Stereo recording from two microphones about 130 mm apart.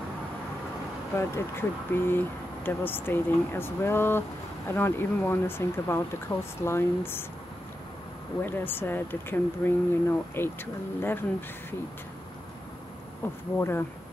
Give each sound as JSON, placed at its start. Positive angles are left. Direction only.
{"t": 1.1, "sound": "speech", "side_deg": 20}
{"t": 8.4, "sound": "speech", "side_deg": 15}
{"t": 13.2, "sound": "speech", "side_deg": 20}